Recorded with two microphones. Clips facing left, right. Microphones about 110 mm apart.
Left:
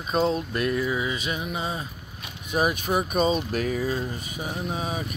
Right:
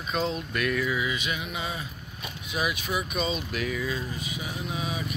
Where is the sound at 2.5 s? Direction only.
45° left (ahead or behind).